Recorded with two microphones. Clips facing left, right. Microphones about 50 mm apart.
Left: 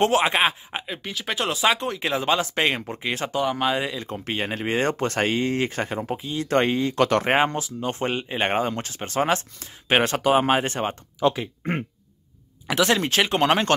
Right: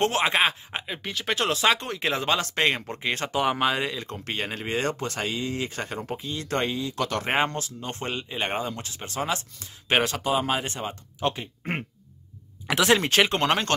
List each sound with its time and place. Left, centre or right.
0.0 s speech: centre
4.6 s speech: left
4.9 s speech: left
5.9 s speech: centre
6.5 s speech: left
6.8 s speech: left
7.2 s speech: centre; by 11.0 s left
12.6 s speech: centre